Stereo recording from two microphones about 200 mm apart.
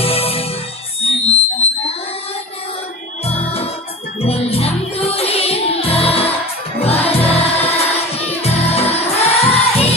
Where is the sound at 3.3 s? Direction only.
30° left (ahead or behind).